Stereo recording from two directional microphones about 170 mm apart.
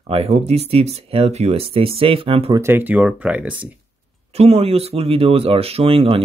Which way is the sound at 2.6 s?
10° right (ahead or behind).